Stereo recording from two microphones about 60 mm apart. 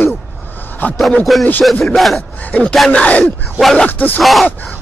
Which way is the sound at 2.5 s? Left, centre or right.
Left.